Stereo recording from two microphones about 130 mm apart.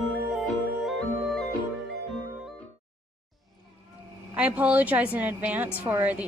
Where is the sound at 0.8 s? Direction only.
Centre (ahead or behind).